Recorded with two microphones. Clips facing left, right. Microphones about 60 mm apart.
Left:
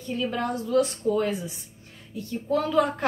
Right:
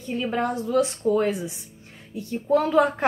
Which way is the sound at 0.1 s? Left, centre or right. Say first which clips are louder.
Right 2 dB; right.